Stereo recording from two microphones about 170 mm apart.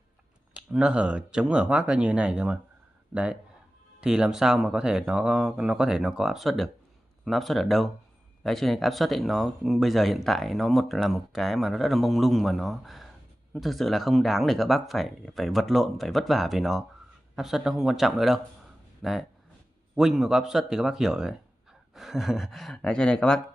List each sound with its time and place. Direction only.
0.7 s speech: 5° right (ahead or behind)